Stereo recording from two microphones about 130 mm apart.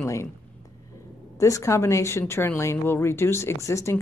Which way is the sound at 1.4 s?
25° left (ahead or behind).